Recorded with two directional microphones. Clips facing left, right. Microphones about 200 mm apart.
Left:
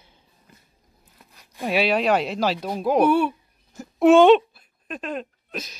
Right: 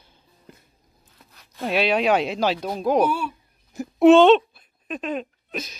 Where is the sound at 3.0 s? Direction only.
60° left (ahead or behind).